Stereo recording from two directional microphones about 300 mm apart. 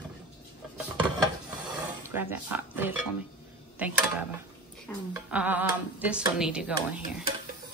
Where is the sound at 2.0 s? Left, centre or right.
Centre.